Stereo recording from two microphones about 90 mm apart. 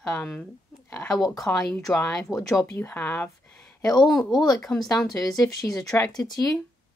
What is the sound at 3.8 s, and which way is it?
Speech, 45° left (ahead or behind).